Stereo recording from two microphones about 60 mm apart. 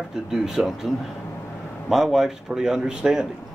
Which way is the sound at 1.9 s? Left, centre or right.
Centre.